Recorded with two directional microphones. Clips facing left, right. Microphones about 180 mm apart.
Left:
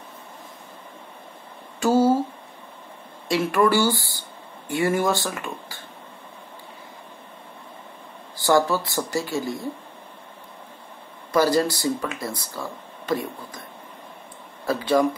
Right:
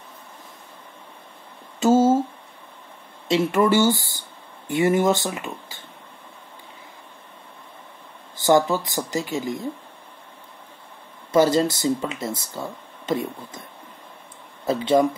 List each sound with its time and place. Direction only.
1.8 s a sound: 20° right (ahead or behind)
3.3 s speech: 20° right (ahead or behind)
8.4 s speech: 20° right (ahead or behind)
11.3 s speech: 25° right (ahead or behind)
14.6 s speech: 20° right (ahead or behind)